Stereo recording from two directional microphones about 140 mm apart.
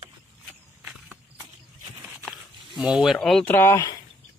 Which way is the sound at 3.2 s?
5° left (ahead or behind).